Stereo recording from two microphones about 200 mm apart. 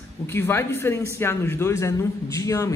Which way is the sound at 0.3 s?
10° left (ahead or behind).